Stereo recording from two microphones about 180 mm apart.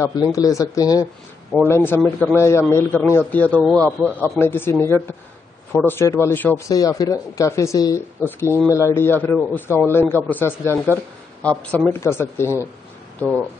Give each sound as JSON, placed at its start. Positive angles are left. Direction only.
{"t": 0.0, "sound": "speech", "side_deg": 20}
{"t": 13.2, "sound": "speech", "side_deg": 5}